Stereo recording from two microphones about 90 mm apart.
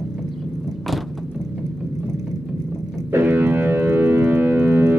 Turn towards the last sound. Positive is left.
turn(degrees=-25)  # may be behind; listen again after turning